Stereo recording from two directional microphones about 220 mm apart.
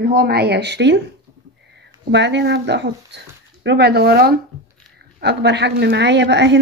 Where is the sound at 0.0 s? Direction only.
45° right (ahead or behind).